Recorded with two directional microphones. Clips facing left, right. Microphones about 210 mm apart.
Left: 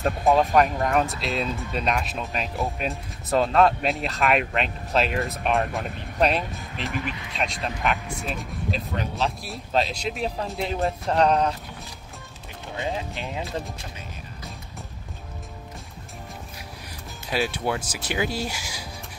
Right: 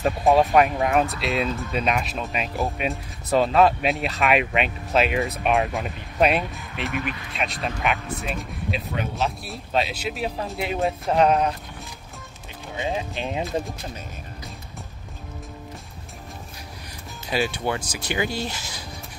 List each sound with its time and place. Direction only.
0.0 s speech: centre (ahead or behind)
12.7 s speech: 15° right (ahead or behind)
17.3 s speech: centre (ahead or behind)